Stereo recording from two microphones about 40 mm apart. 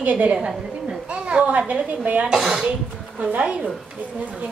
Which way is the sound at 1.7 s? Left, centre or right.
Right.